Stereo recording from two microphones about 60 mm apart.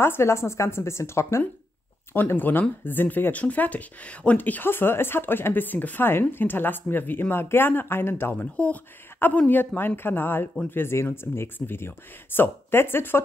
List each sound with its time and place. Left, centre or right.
0.0 s speech: left
2.3 s speech: left
8.5 s speech: left
9.5 s speech: left